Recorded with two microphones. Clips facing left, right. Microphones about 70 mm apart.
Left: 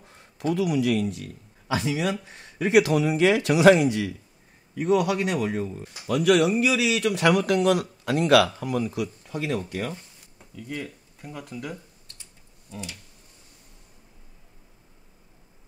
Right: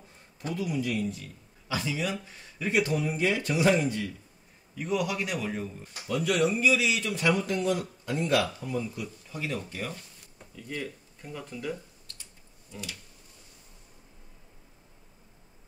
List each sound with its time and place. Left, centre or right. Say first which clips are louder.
0.6 s speech: left 6 dB; left
2.6 s a man's voice: left 8 dB; left
4.7 s speech: left 7 dB; left
5.5 s a man's voice: left 6 dB; left
8.6 s speech: left 6 dB; left
10.8 s speech: left 1 dB; centre